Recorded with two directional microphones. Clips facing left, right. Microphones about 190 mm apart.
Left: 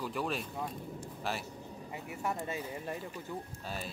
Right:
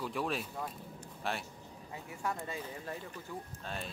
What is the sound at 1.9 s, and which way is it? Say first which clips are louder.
Speech: left 2 dB; 15° left (ahead or behind).